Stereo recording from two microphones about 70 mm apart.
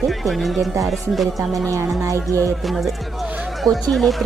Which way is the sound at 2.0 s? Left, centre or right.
Right.